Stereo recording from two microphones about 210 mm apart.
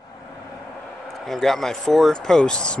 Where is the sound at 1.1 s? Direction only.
Centre (ahead or behind).